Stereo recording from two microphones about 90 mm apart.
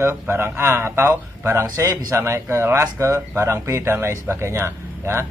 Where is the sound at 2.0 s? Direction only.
30° right (ahead or behind).